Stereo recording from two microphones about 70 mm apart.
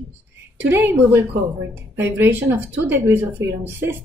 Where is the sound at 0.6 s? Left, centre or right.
Right.